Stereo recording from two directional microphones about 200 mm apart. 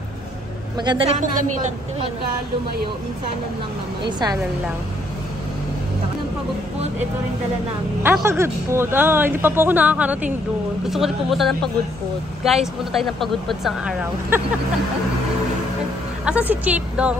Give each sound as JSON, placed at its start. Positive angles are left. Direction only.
{"t": 0.7, "sound": "a woman's voice", "side_deg": -25}
{"t": 1.2, "sound": "a woman's voice", "side_deg": -40}
{"t": 8.0, "sound": "a woman's voice", "side_deg": -10}
{"t": 12.9, "sound": "speech", "side_deg": 0}
{"t": 16.3, "sound": "a woman's voice", "side_deg": -5}